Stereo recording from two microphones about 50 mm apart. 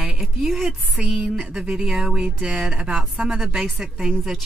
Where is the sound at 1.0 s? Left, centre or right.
Right.